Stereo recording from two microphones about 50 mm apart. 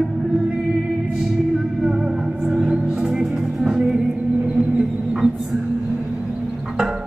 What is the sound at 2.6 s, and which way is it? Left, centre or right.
Music, centre.